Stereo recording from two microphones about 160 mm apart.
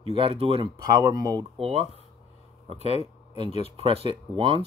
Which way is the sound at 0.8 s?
20° right (ahead or behind).